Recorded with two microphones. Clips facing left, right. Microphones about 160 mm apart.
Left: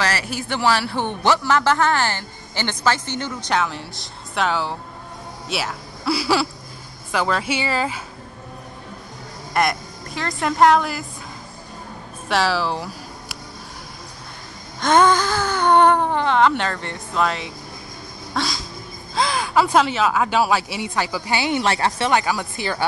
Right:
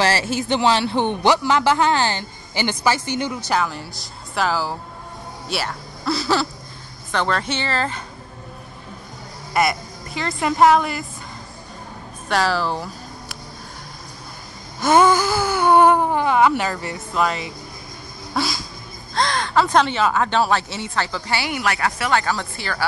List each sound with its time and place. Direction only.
0.0 s a man's voice: 30° right (ahead or behind); by 8.0 s 10° left (ahead or behind)
9.5 s a woman's voice: centre (ahead or behind)
12.3 s speech: centre (ahead or behind)
14.8 s speech: 10° right (ahead or behind)
18.3 s cat: 5° right (ahead or behind)
19.1 s speech: 5° left (ahead or behind); by 22.1 s 30° left (ahead or behind)
22.1 s speech: 15° left (ahead or behind)